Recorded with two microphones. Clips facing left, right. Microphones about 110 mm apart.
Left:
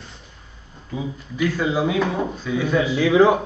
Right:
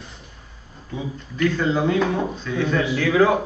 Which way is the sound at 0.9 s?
10° left (ahead or behind).